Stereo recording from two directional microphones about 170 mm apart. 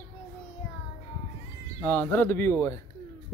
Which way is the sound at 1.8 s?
10° left (ahead or behind).